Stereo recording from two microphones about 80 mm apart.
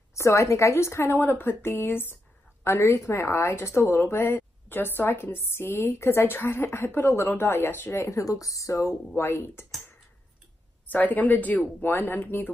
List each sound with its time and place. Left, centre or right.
0.1 s a woman's voice: left
9.1 s a woman's voice: left
10.9 s a woman's voice: left